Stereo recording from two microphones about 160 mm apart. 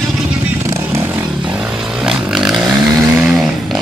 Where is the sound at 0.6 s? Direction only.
20° right (ahead or behind).